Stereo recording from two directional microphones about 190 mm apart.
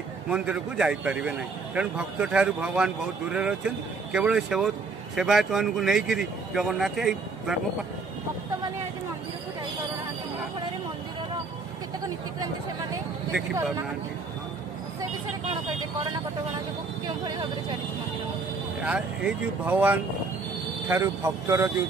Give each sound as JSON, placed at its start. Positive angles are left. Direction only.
{"t": 0.3, "sound": "speech", "side_deg": -5}
{"t": 15.5, "sound": "vehicle", "side_deg": -30}
{"t": 18.9, "sound": "speech", "side_deg": -5}